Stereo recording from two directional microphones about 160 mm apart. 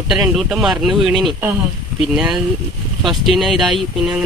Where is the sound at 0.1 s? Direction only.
5° right (ahead or behind).